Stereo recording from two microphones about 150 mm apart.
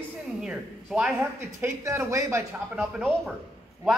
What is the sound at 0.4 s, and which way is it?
Speech, 5° right (ahead or behind).